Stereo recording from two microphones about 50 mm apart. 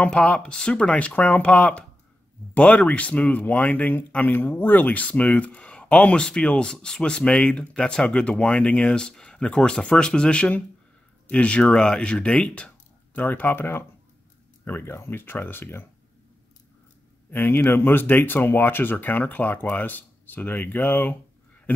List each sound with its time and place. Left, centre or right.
0.1 s speech: centre
13.1 s speech: left
17.3 s speech: left